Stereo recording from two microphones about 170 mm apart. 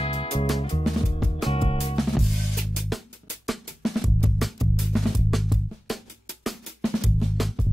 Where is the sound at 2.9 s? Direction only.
Centre (ahead or behind).